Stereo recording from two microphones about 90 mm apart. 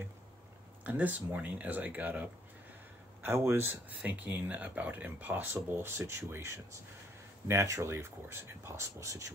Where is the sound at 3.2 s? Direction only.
30° right (ahead or behind).